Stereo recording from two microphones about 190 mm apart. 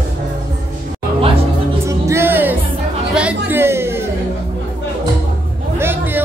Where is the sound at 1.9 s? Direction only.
15° right (ahead or behind).